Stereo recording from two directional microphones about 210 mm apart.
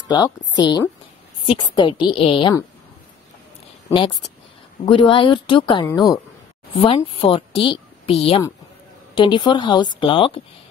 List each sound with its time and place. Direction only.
0.0 s a woman's voice: 15° left (ahead or behind)
3.9 s a woman's voice: 25° left (ahead or behind)